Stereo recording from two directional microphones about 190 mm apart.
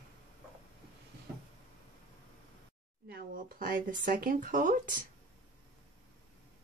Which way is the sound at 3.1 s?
50° right (ahead or behind).